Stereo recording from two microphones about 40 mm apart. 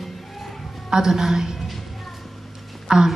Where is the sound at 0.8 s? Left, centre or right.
Centre.